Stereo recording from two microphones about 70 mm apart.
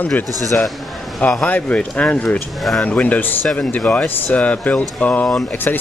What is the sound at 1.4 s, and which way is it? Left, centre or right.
Speech, left.